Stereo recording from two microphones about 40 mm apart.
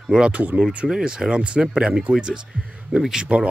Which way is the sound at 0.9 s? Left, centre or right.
Centre.